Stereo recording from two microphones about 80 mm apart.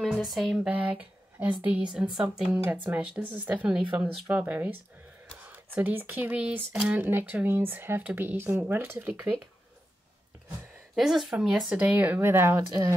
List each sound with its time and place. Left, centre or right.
0.0 s a sound: centre
0.7 s speech: centre
2.6 s speech: right
7.0 s speech: right
11.0 s a sound: centre
11.3 s speech: centre; by 12.5 s right